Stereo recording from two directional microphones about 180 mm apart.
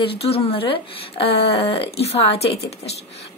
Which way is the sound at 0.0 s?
30° left (ahead or behind).